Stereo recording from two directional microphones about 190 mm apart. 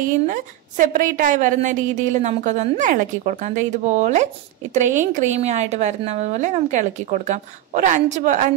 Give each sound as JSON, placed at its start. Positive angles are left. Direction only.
{"t": 0.0, "sound": "a woman's voice", "side_deg": -45}